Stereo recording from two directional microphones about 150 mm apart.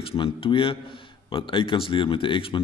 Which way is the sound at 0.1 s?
35° left (ahead or behind).